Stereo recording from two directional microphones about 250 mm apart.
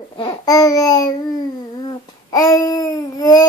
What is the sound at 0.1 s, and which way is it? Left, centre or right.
Babbling, centre.